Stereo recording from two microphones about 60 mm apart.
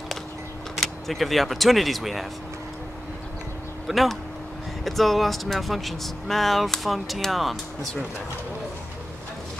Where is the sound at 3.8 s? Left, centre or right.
Centre.